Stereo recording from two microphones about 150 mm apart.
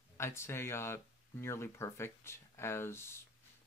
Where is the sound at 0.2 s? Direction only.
15° left (ahead or behind).